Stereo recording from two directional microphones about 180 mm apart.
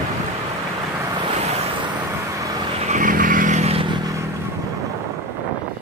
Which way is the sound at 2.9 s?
50° right (ahead or behind).